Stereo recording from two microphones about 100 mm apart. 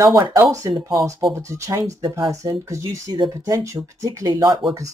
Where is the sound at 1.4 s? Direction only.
30° right (ahead or behind).